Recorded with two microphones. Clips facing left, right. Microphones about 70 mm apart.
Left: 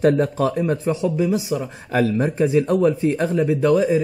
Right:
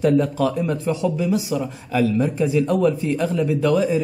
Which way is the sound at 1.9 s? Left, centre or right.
Left.